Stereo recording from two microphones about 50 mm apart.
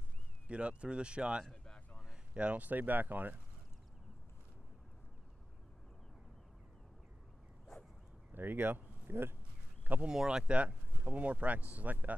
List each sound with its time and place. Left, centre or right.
0.5 s speech: right
1.4 s a sound: centre
2.3 s speech: right
8.3 s speech: right
10.0 s speech: centre; by 12.2 s right